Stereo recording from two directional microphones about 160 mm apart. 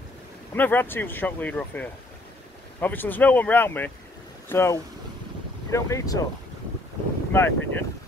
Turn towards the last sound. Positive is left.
turn(degrees=15)  # may be behind; listen again after turning